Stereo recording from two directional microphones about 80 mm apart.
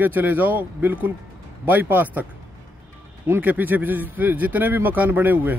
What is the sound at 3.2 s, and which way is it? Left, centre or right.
Speech, right.